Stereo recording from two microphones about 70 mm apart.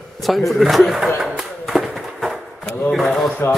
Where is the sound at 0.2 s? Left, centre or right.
Centre.